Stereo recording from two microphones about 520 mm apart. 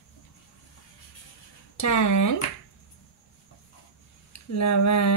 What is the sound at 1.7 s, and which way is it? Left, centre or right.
Speech, left.